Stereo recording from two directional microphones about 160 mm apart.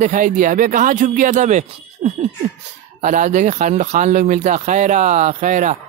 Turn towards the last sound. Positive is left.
turn(degrees=-50)  # may be behind; listen again after turning